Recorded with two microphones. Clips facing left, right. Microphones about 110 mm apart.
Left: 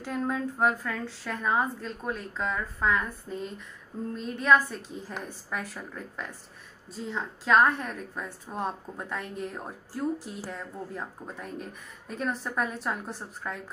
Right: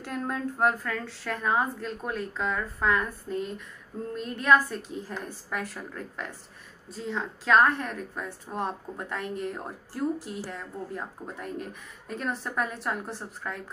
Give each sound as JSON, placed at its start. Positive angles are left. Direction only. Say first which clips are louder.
{"t": 0.0, "sound": "a woman's voice", "louder": "left 1 dB", "side_deg": 0}